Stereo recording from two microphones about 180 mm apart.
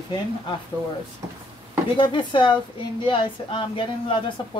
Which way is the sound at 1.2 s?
20° right (ahead or behind).